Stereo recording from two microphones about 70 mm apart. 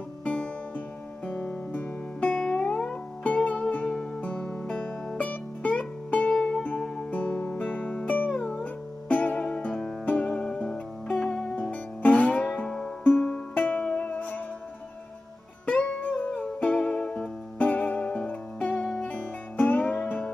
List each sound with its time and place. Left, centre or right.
0.2 s music: centre
13.0 s music: centre
15.6 s music: centre